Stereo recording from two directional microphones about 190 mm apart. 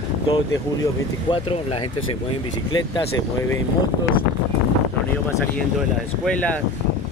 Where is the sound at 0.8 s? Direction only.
25° left (ahead or behind).